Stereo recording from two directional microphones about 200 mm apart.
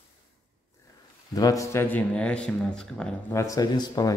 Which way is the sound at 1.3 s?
15° left (ahead or behind).